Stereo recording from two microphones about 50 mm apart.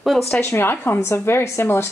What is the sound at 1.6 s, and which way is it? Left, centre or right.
Speech, left.